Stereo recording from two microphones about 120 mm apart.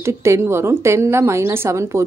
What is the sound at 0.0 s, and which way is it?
A woman's voice, 25° right (ahead or behind).